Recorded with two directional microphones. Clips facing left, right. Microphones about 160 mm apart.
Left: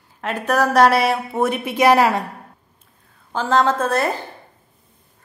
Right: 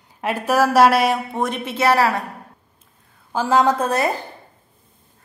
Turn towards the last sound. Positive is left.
turn(degrees=-15)  # may be behind; listen again after turning